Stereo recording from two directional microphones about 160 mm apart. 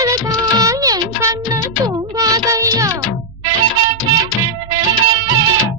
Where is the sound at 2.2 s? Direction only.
20° right (ahead or behind).